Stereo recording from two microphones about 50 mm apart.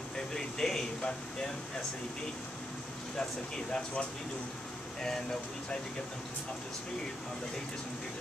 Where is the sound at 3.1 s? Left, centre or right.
Centre.